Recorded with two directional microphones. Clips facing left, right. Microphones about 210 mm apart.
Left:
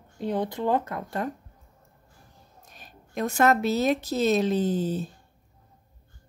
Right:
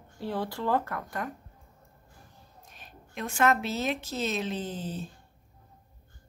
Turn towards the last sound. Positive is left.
turn(degrees=40)  # may be behind; listen again after turning